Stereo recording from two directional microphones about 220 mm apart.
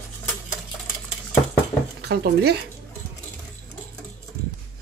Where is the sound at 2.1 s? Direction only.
45° right (ahead or behind).